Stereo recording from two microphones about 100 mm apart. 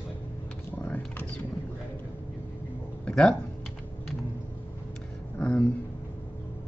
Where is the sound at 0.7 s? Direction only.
20° left (ahead or behind).